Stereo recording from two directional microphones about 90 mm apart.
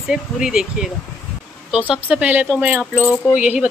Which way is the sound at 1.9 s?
15° right (ahead or behind).